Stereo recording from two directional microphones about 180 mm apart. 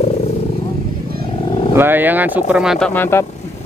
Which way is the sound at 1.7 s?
10° right (ahead or behind).